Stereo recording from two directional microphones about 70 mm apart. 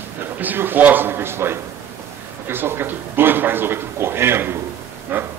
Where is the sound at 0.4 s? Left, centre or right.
Right.